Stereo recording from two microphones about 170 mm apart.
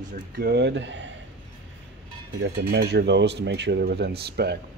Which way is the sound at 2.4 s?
70° right (ahead or behind).